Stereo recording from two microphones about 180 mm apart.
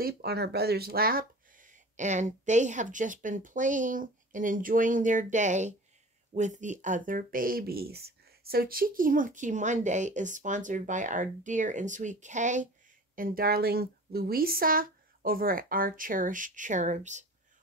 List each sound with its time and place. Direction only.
0.0 s speech: 65° right (ahead or behind); by 17.3 s 40° right (ahead or behind)